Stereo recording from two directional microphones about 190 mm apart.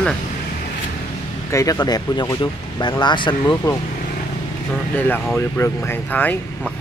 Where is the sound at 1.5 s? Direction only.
20° left (ahead or behind).